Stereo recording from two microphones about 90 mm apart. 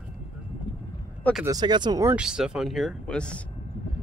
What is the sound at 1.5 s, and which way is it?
Speech, 55° right (ahead or behind).